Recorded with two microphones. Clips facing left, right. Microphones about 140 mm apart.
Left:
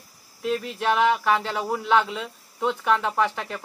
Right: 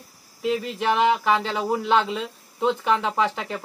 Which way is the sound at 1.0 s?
15° right (ahead or behind).